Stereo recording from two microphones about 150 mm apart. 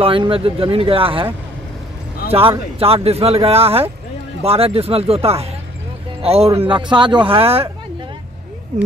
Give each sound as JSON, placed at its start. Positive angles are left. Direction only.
{"t": 0.0, "sound": "speech", "side_deg": -35}